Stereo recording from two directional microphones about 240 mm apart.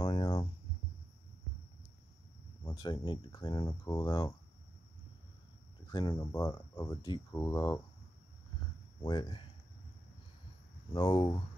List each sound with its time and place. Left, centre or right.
0.0 s hum: left
2.6 s speech: centre
5.9 s speech: centre
9.0 s speech: centre
10.9 s speech: centre